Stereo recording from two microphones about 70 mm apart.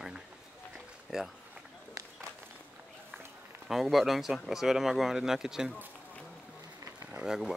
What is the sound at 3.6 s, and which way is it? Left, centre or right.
Speech, centre.